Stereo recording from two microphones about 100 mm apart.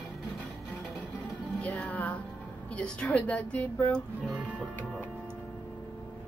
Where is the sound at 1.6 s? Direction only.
10° left (ahead or behind).